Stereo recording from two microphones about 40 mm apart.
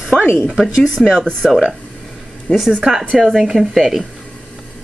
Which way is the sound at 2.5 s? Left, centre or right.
Left.